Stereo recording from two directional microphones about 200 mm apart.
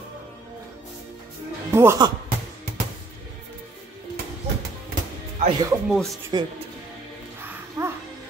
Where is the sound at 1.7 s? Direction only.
15° right (ahead or behind).